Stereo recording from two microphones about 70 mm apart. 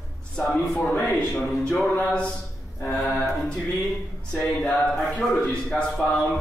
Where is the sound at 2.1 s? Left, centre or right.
Centre.